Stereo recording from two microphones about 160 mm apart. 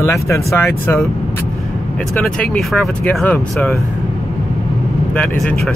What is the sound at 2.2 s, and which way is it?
Speech, 5° left (ahead or behind).